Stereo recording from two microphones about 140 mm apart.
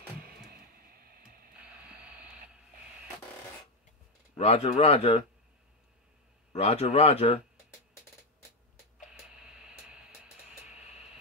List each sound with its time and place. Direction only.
0.9 s a sound: 90° right
4.4 s speech: 50° left (ahead or behind)
6.5 s speech: 50° left (ahead or behind)